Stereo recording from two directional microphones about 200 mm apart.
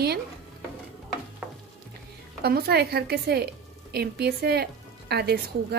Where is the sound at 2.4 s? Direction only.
50° right (ahead or behind).